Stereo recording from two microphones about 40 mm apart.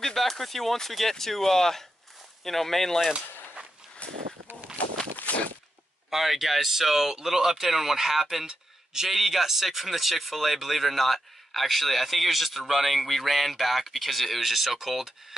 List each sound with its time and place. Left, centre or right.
0.0 s speech: centre
4.8 s walk: left
5.3 s a sound: left
6.0 s speech: centre